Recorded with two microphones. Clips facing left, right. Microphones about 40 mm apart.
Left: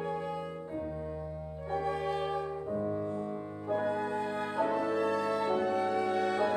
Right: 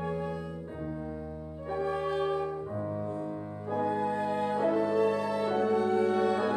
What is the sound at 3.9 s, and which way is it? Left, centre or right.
Music, centre.